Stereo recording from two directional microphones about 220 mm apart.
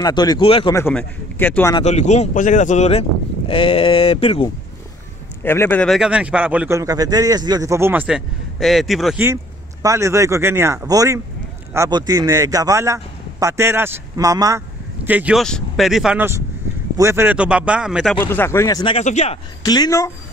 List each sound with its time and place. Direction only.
0.0 s speech: 20° left (ahead or behind)
0.7 s a man's voice: 10° left (ahead or behind)
1.8 s speech: 30° left (ahead or behind)
5.4 s a man's voice: 10° left (ahead or behind)
18.2 s a man's voice: 10° left (ahead or behind)
18.9 s speech: 30° left (ahead or behind)
19.6 s a man's voice: 15° left (ahead or behind)